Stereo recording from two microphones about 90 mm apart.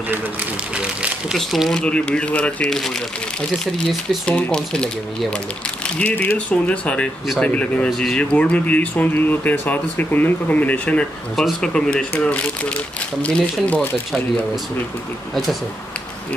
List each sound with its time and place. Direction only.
0.7 s speech: 10° right (ahead or behind)
1.5 s speech: 5° left (ahead or behind)
4.3 s speech: 10° left (ahead or behind)
11.3 s speech: 5° left (ahead or behind)